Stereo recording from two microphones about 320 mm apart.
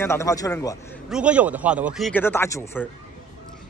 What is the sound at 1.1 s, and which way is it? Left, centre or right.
A man's voice, centre.